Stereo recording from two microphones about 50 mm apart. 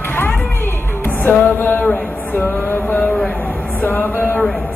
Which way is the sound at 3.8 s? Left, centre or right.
Left.